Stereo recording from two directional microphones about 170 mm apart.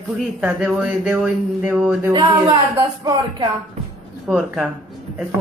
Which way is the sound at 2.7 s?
25° right (ahead or behind).